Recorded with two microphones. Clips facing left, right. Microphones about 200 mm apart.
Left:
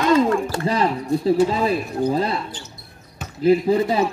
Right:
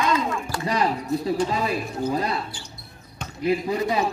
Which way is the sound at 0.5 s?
30° left (ahead or behind).